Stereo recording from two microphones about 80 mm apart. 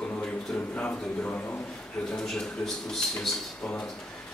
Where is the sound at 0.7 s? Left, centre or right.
Centre.